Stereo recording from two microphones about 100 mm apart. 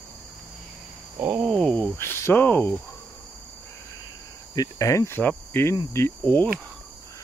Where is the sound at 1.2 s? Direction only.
20° right (ahead or behind).